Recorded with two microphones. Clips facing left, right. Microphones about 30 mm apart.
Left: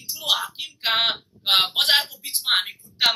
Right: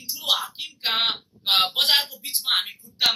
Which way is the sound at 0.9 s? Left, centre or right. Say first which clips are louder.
Left 2 dB; left.